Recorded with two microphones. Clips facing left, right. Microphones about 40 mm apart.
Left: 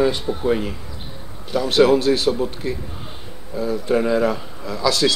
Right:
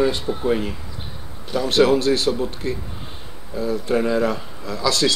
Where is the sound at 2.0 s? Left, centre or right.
Centre.